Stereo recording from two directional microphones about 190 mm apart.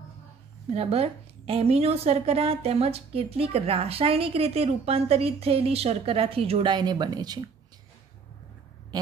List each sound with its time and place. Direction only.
0.7 s a woman's voice: 30° right (ahead or behind)